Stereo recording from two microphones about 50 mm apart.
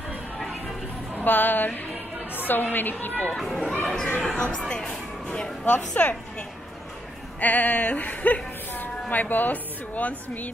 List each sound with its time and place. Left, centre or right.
1.2 s a woman's voice: left
3.3 s speech: centre
3.8 s speech: centre
5.7 s a woman's voice: left
7.3 s a sound: left
9.1 s a woman's voice: left